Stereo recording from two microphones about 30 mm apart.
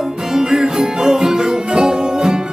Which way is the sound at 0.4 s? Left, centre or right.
Right.